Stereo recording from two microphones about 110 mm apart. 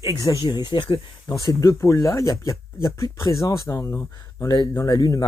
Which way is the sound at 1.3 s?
30° left (ahead or behind).